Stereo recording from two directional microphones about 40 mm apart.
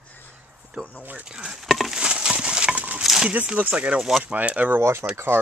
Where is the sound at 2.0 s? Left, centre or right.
Right.